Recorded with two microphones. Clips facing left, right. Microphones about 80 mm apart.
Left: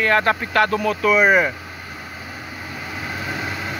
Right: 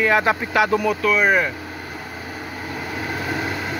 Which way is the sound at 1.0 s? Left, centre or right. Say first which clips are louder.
Left 5 dB; centre.